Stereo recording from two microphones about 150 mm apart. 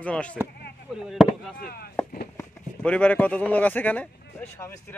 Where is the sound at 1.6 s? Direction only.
90° left.